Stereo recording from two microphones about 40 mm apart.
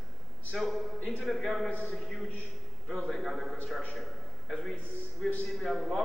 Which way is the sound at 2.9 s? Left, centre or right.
Centre.